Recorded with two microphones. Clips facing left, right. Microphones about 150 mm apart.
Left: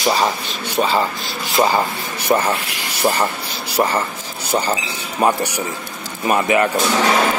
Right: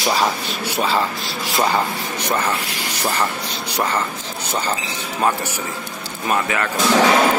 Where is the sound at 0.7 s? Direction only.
Centre (ahead or behind).